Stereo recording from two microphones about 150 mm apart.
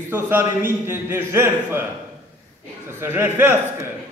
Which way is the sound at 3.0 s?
15° right (ahead or behind).